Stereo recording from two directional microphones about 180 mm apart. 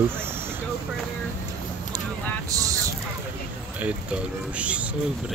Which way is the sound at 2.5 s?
20° right (ahead or behind).